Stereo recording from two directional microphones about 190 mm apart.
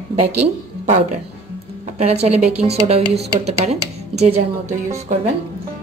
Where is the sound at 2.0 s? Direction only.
35° right (ahead or behind).